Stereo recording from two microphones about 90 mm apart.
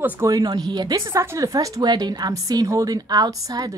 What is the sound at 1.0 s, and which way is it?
Speech, 30° right (ahead or behind).